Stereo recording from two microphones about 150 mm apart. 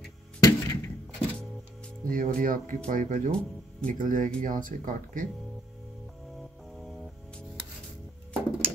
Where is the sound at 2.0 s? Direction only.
65° right (ahead or behind).